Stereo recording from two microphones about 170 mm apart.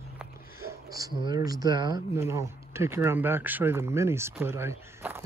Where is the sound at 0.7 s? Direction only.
20° right (ahead or behind).